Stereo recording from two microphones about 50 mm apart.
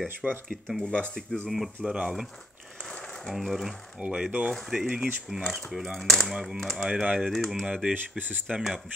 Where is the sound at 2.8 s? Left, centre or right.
Centre.